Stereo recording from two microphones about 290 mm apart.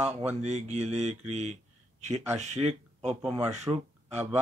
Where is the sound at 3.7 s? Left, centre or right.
Centre.